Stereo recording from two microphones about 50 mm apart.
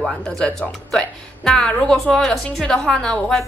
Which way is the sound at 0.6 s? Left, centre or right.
Centre.